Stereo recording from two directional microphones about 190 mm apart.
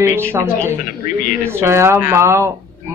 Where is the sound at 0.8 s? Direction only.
45° left (ahead or behind).